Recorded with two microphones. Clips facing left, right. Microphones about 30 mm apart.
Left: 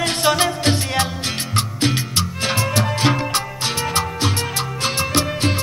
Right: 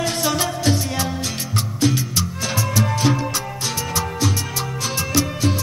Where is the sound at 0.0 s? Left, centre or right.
Left.